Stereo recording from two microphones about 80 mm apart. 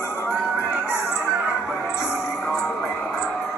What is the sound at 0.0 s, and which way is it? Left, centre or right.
Music, left.